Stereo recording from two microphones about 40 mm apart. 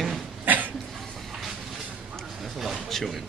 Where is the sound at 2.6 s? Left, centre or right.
Centre.